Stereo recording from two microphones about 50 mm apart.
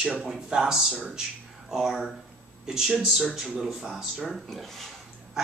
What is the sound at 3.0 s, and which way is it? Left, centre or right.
Speech, centre.